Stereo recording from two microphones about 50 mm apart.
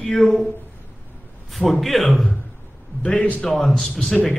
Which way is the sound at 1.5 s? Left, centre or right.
Centre.